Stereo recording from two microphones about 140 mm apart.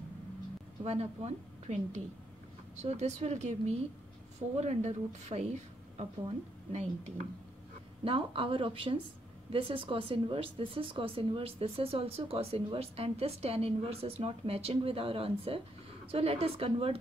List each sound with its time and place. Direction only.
0.8 s speech: 50° right (ahead or behind)
8.0 s speech: 40° right (ahead or behind)